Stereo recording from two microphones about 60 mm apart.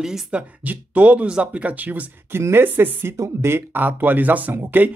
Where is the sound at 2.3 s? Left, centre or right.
Right.